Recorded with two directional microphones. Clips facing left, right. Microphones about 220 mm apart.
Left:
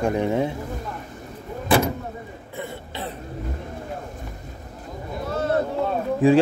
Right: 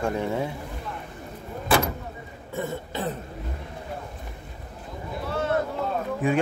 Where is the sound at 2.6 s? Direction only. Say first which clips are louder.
Right 3 dB; 45° right (ahead or behind).